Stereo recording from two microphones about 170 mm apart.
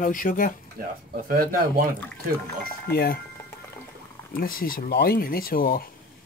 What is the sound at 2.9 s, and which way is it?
Speech, 65° left (ahead or behind).